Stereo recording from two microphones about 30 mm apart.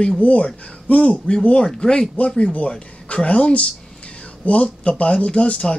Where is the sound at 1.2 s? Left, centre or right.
Left; by 2.5 s centre.